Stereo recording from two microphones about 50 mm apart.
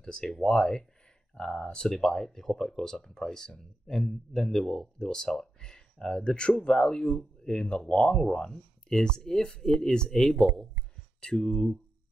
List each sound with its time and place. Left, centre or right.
0.0 s speech: centre